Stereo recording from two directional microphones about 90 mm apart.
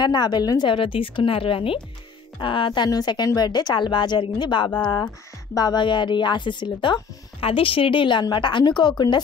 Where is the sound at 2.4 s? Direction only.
65° left (ahead or behind).